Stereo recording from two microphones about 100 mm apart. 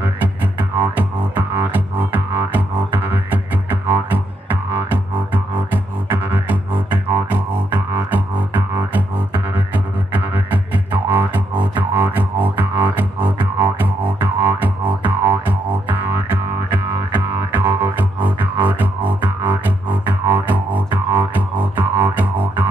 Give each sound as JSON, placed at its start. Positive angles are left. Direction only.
{"t": 0.0, "sound": "music", "side_deg": -20}